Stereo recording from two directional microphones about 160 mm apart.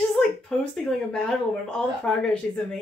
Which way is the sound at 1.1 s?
5° left (ahead or behind).